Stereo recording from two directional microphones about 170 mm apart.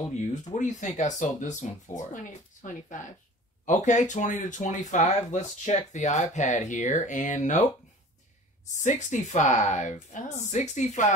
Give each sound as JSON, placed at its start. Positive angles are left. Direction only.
{"t": 0.1, "sound": "speech", "side_deg": 40}
{"t": 8.8, "sound": "speech", "side_deg": 45}